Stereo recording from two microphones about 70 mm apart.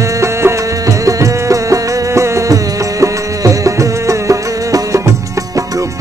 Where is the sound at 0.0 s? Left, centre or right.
Right.